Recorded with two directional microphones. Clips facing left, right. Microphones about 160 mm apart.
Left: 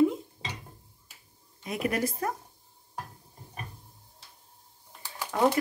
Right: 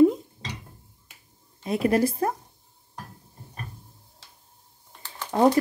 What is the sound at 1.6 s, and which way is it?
Speech, 30° right (ahead or behind).